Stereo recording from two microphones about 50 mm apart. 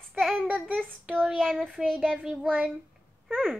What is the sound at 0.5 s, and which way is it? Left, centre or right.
Child singing, centre.